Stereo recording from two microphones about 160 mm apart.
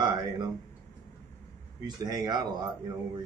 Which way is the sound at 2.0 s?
25° right (ahead or behind).